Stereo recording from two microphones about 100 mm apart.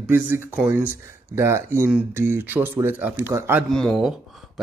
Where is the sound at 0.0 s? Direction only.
20° right (ahead or behind).